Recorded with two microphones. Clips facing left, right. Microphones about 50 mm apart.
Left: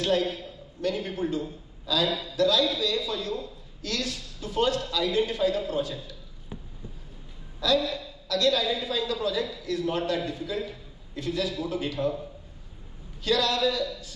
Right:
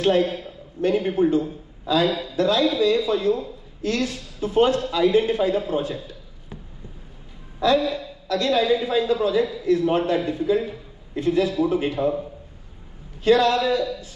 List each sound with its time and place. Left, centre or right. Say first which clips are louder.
0.0 s a man's voice: right 6 dB; right
7.8 s a man's voice: right 6 dB; right
13.2 s a man's voice: right 7 dB; right